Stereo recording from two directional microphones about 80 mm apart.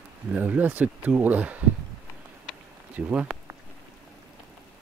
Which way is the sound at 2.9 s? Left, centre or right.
Centre.